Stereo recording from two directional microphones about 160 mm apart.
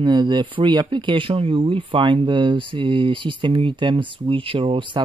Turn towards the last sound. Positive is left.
turn(degrees=-30)  # may be behind; listen again after turning